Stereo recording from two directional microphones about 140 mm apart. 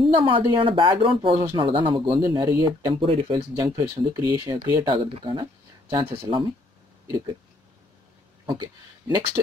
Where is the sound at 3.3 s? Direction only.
30° right (ahead or behind).